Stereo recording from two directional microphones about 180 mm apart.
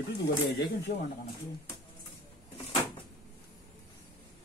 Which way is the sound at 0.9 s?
50° left (ahead or behind).